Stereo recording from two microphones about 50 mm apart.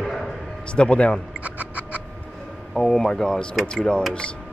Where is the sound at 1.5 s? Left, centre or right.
Right.